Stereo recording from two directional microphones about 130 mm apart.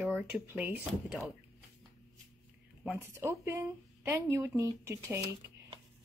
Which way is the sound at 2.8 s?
15° right (ahead or behind).